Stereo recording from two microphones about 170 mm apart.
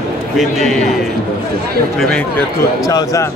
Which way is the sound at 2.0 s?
5° left (ahead or behind).